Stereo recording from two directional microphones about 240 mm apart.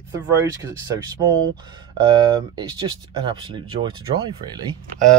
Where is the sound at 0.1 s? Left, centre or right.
Centre.